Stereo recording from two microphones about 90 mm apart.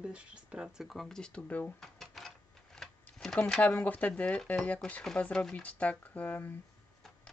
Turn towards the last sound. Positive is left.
turn(degrees=15)  # may be behind; listen again after turning